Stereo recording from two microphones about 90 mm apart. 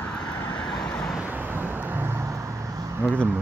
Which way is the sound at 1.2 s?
20° right (ahead or behind).